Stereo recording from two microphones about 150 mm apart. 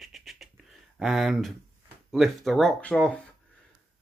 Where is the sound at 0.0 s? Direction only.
Centre (ahead or behind).